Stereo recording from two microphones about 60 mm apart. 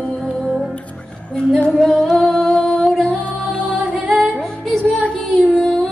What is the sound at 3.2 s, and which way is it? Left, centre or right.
Music, centre.